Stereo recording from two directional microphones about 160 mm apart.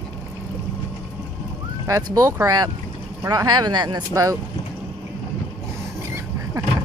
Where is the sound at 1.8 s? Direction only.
15° right (ahead or behind).